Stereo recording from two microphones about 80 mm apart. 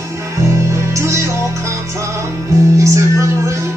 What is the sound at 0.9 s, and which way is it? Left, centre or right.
Music, right.